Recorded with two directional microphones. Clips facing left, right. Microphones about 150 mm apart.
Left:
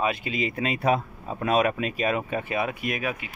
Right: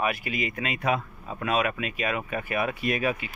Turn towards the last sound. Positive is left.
turn(degrees=10)  # may be behind; listen again after turning